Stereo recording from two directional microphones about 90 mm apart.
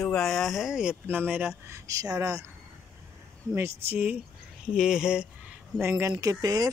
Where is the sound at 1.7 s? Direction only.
40° right (ahead or behind).